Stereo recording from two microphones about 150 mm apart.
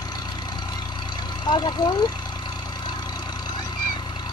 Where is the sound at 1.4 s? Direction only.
30° left (ahead or behind).